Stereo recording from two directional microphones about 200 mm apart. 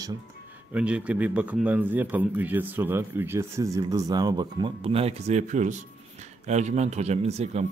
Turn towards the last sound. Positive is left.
turn(degrees=-30)  # may be behind; listen again after turning